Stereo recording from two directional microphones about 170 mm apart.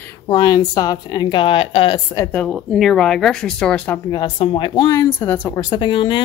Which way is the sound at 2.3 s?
Centre (ahead or behind).